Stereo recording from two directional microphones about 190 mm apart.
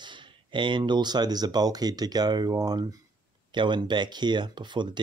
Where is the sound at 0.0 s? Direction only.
25° right (ahead or behind).